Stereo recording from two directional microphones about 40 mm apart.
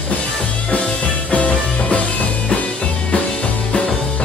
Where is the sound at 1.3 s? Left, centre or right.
Left.